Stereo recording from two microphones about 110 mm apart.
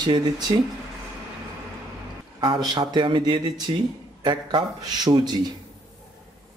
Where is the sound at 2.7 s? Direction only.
40° right (ahead or behind).